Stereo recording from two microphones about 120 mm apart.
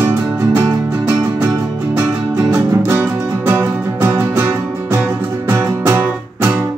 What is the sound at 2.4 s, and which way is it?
Music, 15° right (ahead or behind).